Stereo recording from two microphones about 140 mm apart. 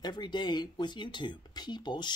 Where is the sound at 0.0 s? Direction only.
30° left (ahead or behind).